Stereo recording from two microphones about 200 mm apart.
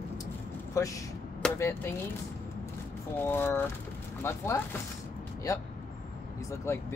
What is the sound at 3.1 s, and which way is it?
Speech, 10° left (ahead or behind).